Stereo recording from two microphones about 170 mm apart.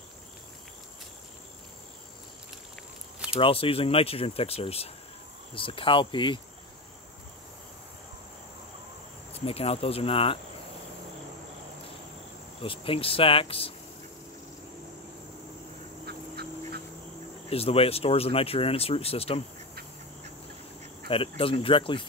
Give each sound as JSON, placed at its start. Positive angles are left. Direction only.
{"t": 3.3, "sound": "speech", "side_deg": 30}
{"t": 9.3, "sound": "speech", "side_deg": 35}
{"t": 12.6, "sound": "speech", "side_deg": 30}
{"t": 16.1, "sound": "duck", "side_deg": -70}
{"t": 17.5, "sound": "speech", "side_deg": 35}
{"t": 21.1, "sound": "speech", "side_deg": 35}